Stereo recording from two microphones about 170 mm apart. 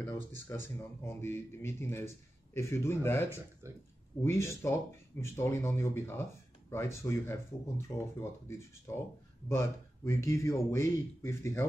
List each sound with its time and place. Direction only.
0.0 s speech: 15° left (ahead or behind)
3.6 s speech: 15° right (ahead or behind)
4.2 s speech: 15° left (ahead or behind)